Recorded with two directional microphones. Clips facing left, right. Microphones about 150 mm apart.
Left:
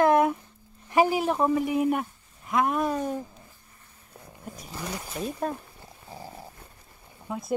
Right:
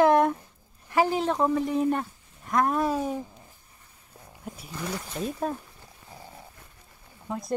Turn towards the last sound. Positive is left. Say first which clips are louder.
# right 1 dB
turn(degrees=0)  # may be behind; listen again after turning